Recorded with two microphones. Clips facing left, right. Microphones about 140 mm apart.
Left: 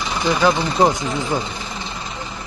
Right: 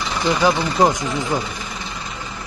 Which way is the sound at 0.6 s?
25° left (ahead or behind).